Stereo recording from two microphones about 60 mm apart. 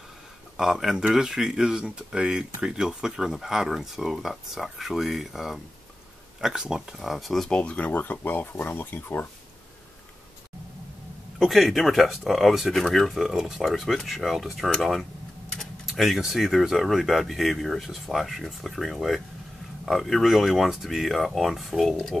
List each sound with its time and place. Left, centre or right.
0.6 s speech: centre
7.5 s speech: centre; by 9.3 s left
11.3 s speech: centre